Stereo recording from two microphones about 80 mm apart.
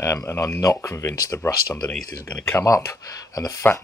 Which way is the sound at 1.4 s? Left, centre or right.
Left.